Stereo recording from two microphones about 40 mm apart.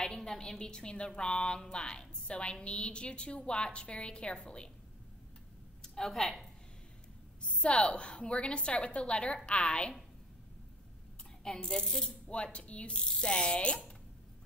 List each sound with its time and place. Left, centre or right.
0.0 s a sound: centre
0.6 s a woman's voice: centre
6.0 s speech: centre
7.6 s a woman's voice: left
11.7 s speech: centre
12.5 s ratchet: left
12.9 s a woman's voice: left